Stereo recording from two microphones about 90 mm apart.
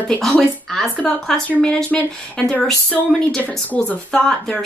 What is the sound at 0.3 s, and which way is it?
A woman's voice, 5° left (ahead or behind).